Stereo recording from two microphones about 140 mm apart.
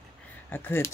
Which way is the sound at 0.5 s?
15° left (ahead or behind).